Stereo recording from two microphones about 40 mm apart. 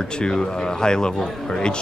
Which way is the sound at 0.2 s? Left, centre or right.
Centre.